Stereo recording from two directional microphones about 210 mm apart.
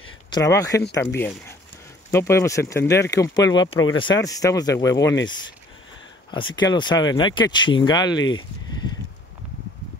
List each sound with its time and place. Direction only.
0.3 s speech: 15° left (ahead or behind)
6.3 s speech: 20° left (ahead or behind)